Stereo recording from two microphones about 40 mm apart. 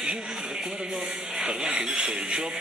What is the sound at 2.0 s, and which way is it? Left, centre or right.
Speech, right.